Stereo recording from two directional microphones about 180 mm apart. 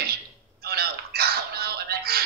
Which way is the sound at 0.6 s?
60° right (ahead or behind).